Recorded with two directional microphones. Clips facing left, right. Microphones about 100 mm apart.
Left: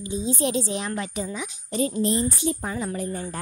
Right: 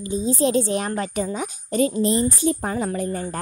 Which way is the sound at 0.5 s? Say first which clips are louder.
Right 5 dB; 50° right (ahead or behind).